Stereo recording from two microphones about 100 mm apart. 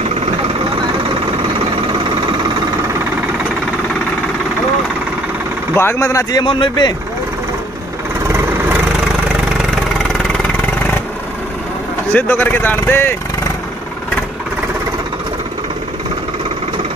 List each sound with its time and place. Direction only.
5.8 s speech: 25° left (ahead or behind)
6.4 s speech: 55° left (ahead or behind)
8.3 s vehicle: 25° right (ahead or behind)
12.1 s speech: 15° left (ahead or behind)